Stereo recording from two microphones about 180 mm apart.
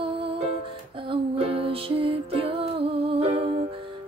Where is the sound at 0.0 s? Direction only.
30° right (ahead or behind).